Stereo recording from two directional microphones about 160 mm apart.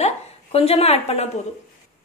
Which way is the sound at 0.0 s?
40° left (ahead or behind).